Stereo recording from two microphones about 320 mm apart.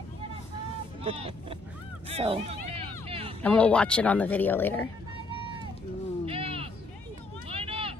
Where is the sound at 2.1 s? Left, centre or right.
Centre.